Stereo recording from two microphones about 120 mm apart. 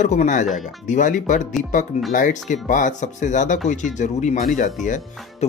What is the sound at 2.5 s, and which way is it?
Speech, 90° left.